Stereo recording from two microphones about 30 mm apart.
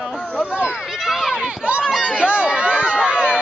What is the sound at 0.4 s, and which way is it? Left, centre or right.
Speech, right.